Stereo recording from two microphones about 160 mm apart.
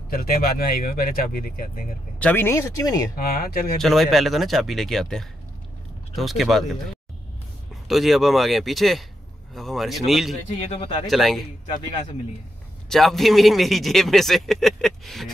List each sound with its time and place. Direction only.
0.1 s speech: 70° left (ahead or behind)
2.1 s speech: 10° left (ahead or behind)
3.2 s speech: 70° left (ahead or behind)
3.8 s speech: centre (ahead or behind)
7.9 s speech: centre (ahead or behind)
10.7 s speech: 35° left (ahead or behind)
11.1 s speech: centre (ahead or behind)
12.9 s speech: centre (ahead or behind)